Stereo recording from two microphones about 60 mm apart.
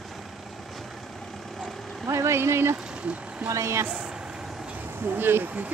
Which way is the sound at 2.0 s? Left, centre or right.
Right.